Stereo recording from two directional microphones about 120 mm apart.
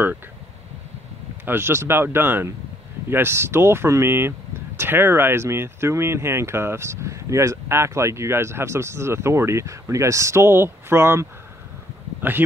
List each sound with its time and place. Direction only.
1.4 s speech: 20° right (ahead or behind)